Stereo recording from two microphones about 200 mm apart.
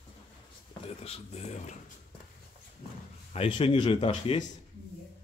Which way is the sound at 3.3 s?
25° left (ahead or behind).